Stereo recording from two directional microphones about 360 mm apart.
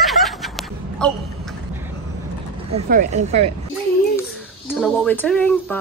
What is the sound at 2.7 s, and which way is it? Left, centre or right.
Speech, centre.